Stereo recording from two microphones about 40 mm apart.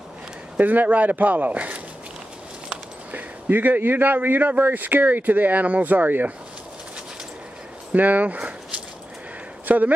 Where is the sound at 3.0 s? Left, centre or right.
Right.